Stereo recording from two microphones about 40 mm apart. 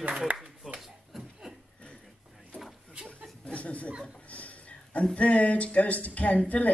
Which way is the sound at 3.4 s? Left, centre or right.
Left.